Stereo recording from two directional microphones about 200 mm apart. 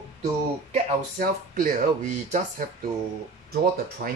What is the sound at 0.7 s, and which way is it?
Speech, 40° right (ahead or behind).